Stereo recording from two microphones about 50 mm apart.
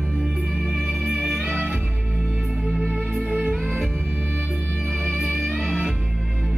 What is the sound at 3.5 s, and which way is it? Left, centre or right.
Music, centre.